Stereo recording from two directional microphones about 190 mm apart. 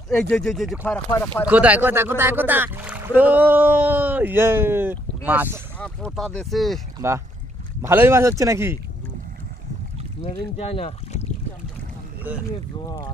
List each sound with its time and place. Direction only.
0.1 s speech: 5° left (ahead or behind)
1.5 s speech: 10° right (ahead or behind)
5.8 s speech: 5° left (ahead or behind)
7.8 s speech: 10° right (ahead or behind)
10.3 s speech: 30° left (ahead or behind)